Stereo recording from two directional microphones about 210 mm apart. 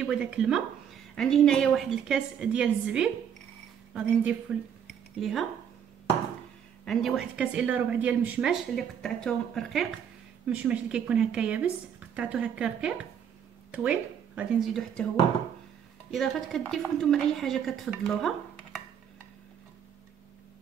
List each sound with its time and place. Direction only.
0.0 s a woman's voice: 5° right (ahead or behind)
6.8 s a woman's voice: centre (ahead or behind)
16.1 s a woman's voice: centre (ahead or behind)